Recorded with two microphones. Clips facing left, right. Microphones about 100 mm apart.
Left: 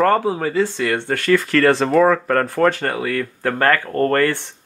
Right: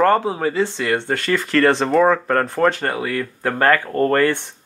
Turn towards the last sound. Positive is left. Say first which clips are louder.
# even
turn(degrees=-15)  # may be behind; listen again after turning